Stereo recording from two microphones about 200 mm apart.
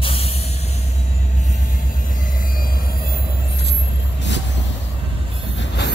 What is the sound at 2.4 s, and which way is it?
Vehicle, 45° left (ahead or behind).